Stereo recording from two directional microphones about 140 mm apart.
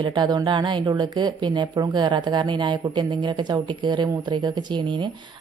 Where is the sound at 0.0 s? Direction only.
30° right (ahead or behind).